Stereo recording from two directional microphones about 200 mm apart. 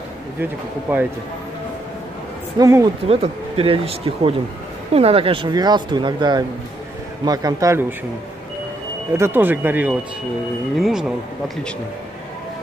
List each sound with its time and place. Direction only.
0.4 s speech: 10° right (ahead or behind)
2.6 s speech: 20° right (ahead or behind)
3.1 s speech: 30° right (ahead or behind)
9.1 s speech: 10° right (ahead or behind)